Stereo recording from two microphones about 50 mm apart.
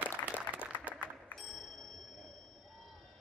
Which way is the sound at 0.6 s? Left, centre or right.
Left.